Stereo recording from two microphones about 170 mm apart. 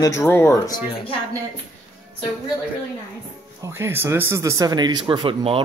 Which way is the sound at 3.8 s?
15° right (ahead or behind).